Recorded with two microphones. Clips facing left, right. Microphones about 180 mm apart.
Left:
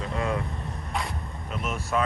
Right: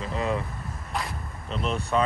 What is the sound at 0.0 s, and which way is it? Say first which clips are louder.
Vehicle: right 1 dB; centre (ahead or behind).